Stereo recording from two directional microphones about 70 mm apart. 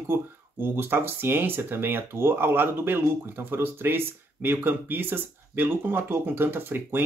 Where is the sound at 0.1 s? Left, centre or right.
Right.